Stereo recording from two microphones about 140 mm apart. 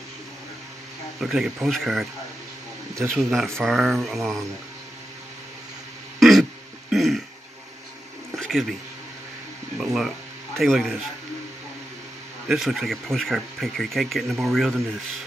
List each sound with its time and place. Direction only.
1.2 s speech: 5° right (ahead or behind)
3.2 s speech: centre (ahead or behind)
6.1 s throat clearing: centre (ahead or behind)
8.4 s a sound: centre (ahead or behind)
9.8 s speech: centre (ahead or behind)
12.4 s speech: centre (ahead or behind)